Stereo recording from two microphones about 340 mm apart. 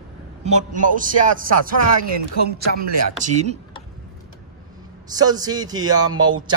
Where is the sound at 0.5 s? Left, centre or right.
Right.